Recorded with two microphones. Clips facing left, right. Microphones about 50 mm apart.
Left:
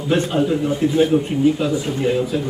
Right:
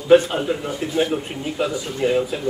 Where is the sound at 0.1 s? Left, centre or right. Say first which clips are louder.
Right 3 dB; centre.